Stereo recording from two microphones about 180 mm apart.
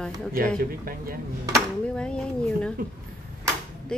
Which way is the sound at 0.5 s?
55° right (ahead or behind).